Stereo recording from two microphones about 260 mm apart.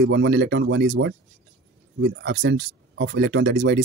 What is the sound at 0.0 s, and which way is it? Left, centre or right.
Speech, right.